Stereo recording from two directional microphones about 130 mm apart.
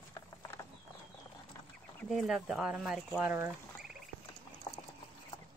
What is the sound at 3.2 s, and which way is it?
Speech, 20° right (ahead or behind).